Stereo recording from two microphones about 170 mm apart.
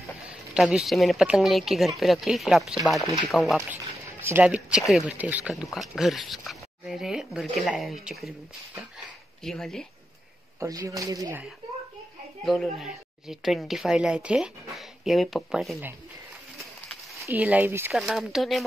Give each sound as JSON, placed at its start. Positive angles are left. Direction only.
{"t": 0.0, "sound": "speech", "side_deg": -5}
{"t": 4.2, "sound": "speech", "side_deg": -10}
{"t": 9.4, "sound": "speech", "side_deg": 0}
{"t": 10.6, "sound": "speech", "side_deg": -20}
{"t": 12.4, "sound": "speech", "side_deg": 0}
{"t": 17.2, "sound": "speech", "side_deg": -10}
{"t": 17.9, "sound": "speech", "side_deg": 0}